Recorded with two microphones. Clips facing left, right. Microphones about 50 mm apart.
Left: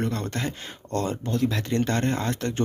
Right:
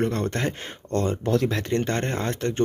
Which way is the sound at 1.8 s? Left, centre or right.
Right.